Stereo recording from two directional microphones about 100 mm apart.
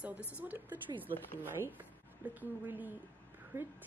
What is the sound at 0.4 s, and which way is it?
A woman's voice, 15° right (ahead or behind).